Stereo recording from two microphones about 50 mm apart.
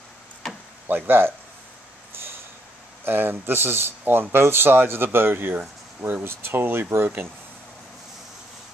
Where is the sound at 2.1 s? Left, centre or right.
Right.